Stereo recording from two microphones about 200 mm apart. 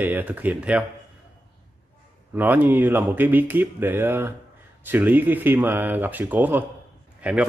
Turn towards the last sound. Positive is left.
turn(degrees=-5)  # may be behind; listen again after turning